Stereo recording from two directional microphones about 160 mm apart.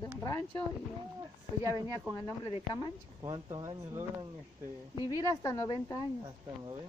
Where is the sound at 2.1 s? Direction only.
25° left (ahead or behind).